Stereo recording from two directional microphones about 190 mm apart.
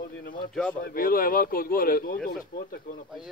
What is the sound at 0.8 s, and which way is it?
Speech, 50° left (ahead or behind).